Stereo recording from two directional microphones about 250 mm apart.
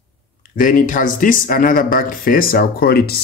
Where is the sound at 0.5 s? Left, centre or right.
Left.